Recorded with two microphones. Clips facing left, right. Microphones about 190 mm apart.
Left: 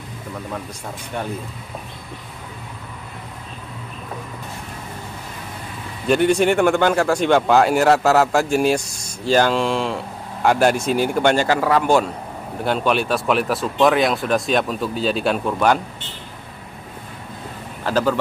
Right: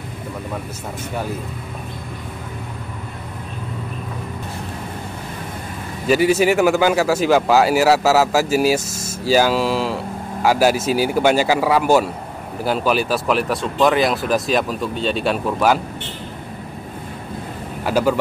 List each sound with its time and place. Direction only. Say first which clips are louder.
6.0 s speech: right 1 dB; 5° right (ahead or behind)
17.8 s speech: right 2 dB; 10° right (ahead or behind)